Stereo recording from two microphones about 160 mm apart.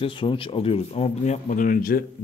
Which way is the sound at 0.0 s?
30° left (ahead or behind).